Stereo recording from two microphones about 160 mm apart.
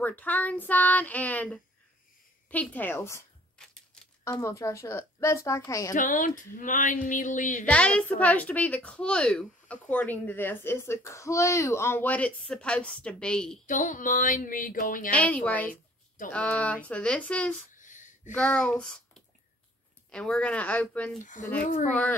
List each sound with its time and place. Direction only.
0.0 s speech: 10° left (ahead or behind)
3.5 s typewriter: 5° left (ahead or behind)
4.2 s speech: 20° left (ahead or behind)
5.9 s speech: 55° left (ahead or behind)
7.1 s a sound: 55° left (ahead or behind)
7.6 s speech: 5° left (ahead or behind)
13.7 s speech: 55° left (ahead or behind)
15.0 s speech: 10° left (ahead or behind)
17.7 s a sound: 50° left (ahead or behind)
18.3 s speech: 10° left (ahead or behind)
21.2 s a sound: 55° left (ahead or behind)